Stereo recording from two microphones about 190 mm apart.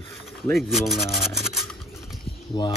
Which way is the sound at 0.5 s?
Centre (ahead or behind).